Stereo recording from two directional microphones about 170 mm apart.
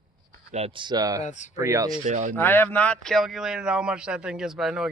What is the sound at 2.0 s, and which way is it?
Speech, 45° right (ahead or behind).